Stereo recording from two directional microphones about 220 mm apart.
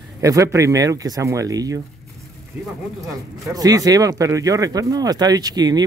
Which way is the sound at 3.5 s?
15° right (ahead or behind).